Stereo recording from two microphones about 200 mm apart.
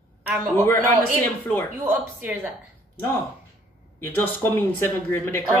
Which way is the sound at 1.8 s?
10° right (ahead or behind).